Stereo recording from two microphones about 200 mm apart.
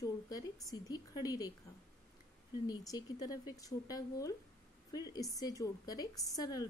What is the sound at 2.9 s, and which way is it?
A woman's voice, 20° left (ahead or behind).